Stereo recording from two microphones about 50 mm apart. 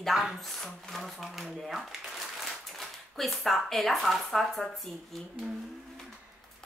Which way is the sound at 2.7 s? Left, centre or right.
Centre.